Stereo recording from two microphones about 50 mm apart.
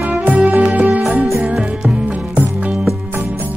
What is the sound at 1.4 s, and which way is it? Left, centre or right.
Music, centre.